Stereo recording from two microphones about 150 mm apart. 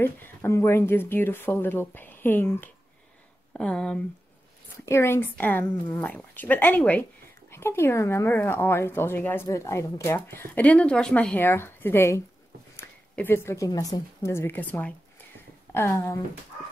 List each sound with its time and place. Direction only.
0.0 s speech: 15° left (ahead or behind)
4.7 s a woman's voice: 15° left (ahead or behind)